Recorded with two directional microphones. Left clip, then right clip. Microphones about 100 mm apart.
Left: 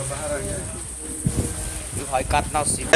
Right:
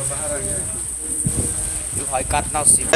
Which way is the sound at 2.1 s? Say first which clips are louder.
Even; 20° right (ahead or behind).